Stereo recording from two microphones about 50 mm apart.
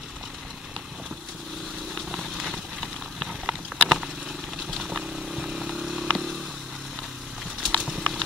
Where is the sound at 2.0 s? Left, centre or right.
Centre.